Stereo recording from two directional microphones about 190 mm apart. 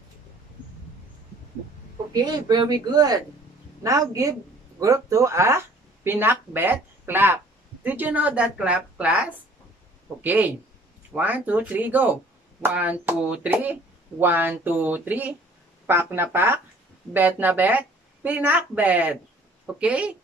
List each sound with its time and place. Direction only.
2.1 s a woman's voice: 20° right (ahead or behind)